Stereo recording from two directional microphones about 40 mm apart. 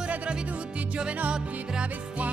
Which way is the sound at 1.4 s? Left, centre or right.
Right.